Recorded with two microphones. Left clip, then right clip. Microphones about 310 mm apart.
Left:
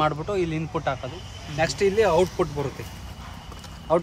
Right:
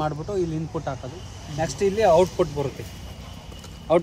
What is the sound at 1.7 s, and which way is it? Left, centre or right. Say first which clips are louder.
Speech: right 3 dB; centre.